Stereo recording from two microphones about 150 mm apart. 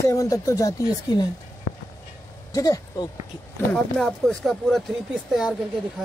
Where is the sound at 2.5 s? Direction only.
25° left (ahead or behind).